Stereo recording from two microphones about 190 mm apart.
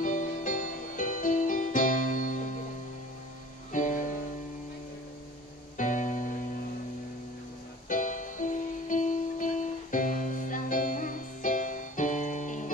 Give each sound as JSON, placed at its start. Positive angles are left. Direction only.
{"t": 0.0, "sound": "music", "side_deg": 45}
{"t": 3.7, "sound": "music", "side_deg": 45}
{"t": 5.8, "sound": "music", "side_deg": 40}
{"t": 7.9, "sound": "music", "side_deg": 45}